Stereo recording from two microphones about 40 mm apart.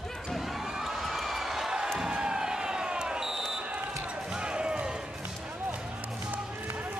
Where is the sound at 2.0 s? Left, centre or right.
Centre.